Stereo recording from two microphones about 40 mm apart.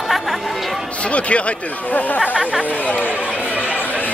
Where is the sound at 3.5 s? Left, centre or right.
Right.